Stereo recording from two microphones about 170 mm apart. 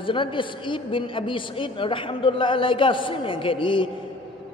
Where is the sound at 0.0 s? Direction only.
30° left (ahead or behind).